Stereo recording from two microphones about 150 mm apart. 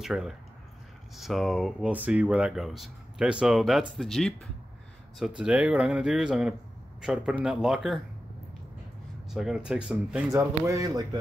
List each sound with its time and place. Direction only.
0.0 s speech: 5° right (ahead or behind)
9.3 s speech: 5° right (ahead or behind)
10.7 s a man's voice: 25° right (ahead or behind)